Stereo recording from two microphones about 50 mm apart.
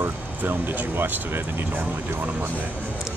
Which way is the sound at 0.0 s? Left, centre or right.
Right.